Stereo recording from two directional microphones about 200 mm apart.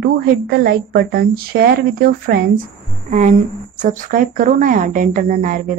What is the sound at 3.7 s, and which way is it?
Speech, 40° right (ahead or behind).